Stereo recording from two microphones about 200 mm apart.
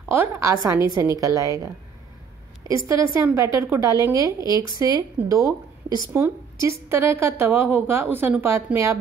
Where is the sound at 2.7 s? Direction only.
15° right (ahead or behind).